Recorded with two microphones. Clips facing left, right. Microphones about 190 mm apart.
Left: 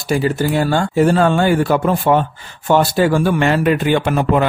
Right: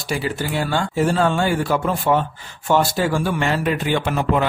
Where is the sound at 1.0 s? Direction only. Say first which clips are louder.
Left 5 dB; 60° left (ahead or behind).